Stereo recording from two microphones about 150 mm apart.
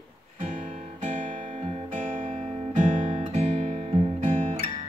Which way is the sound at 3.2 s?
50° right (ahead or behind).